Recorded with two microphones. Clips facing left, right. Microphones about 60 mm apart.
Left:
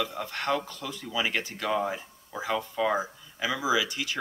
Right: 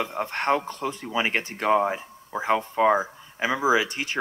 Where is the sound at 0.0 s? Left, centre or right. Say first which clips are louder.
Right 4 dB; right.